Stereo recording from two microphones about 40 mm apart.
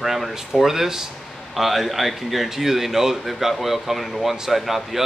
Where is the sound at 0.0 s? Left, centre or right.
Centre.